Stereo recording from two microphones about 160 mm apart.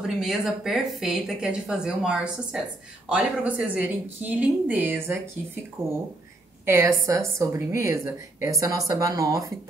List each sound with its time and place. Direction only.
0.0 s speech: centre (ahead or behind)
6.6 s a woman's voice: 15° right (ahead or behind)